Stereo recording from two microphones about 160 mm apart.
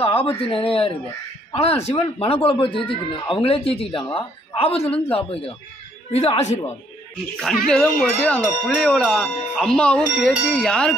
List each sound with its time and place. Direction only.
0.0 s a man's voice: 35° left (ahead or behind)
7.6 s speech: 5° left (ahead or behind)